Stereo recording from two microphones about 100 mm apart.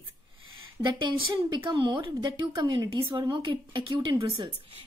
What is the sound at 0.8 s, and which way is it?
Speech, 50° right (ahead or behind).